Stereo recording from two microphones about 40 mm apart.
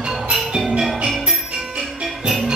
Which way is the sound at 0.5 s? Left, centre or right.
Centre.